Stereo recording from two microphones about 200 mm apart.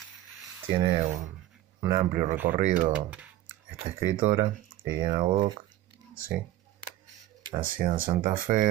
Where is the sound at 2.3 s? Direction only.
10° right (ahead or behind).